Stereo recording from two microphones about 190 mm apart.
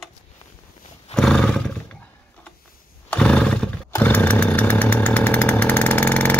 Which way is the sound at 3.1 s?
5° left (ahead or behind).